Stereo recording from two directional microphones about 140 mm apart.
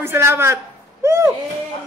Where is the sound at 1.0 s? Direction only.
20° right (ahead or behind).